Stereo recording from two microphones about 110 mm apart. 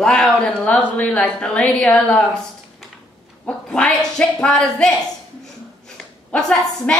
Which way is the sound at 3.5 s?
10° left (ahead or behind).